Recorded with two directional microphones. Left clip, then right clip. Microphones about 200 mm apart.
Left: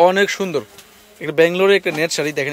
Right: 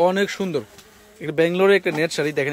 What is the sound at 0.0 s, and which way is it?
Speech, 5° right (ahead or behind).